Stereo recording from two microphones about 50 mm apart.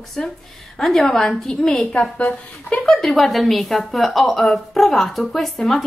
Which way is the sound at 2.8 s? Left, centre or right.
Centre.